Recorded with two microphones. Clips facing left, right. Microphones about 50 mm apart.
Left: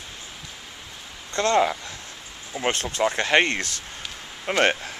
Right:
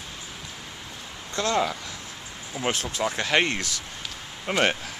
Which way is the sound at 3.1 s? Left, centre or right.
Centre.